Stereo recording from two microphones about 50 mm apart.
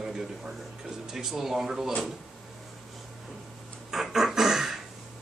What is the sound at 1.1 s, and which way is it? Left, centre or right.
Speech, centre.